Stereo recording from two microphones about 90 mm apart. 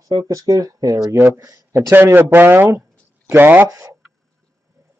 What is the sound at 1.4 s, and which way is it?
Speech, 35° right (ahead or behind).